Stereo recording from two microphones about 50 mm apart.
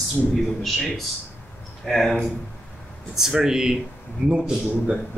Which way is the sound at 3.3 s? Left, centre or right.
Centre.